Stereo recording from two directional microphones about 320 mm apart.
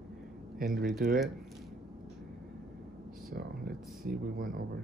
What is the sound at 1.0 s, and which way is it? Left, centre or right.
Speech, right.